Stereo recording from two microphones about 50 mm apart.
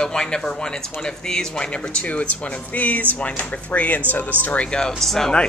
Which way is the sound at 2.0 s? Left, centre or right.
Left.